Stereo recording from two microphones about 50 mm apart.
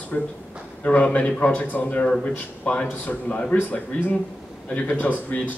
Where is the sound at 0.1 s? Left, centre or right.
Left.